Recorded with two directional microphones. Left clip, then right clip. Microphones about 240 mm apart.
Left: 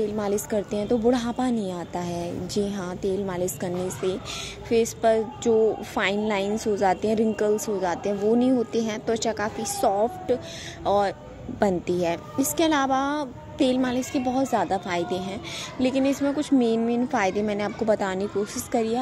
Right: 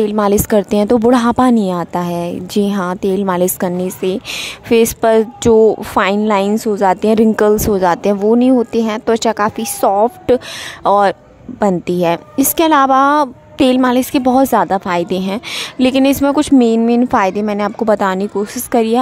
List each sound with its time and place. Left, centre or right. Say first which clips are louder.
0.0 s a woman's voice: right 13 dB; right